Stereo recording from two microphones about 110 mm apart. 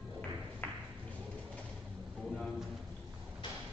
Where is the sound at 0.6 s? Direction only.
15° left (ahead or behind).